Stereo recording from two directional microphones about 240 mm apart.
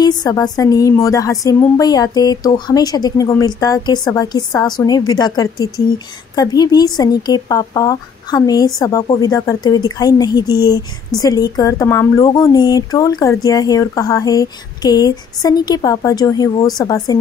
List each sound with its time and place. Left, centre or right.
0.0 s speech: centre
10.4 s speech: centre
11.1 s speech: centre